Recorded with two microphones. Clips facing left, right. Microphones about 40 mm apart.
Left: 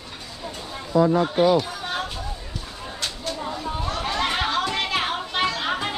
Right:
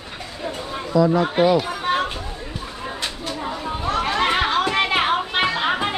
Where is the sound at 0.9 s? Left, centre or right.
Right.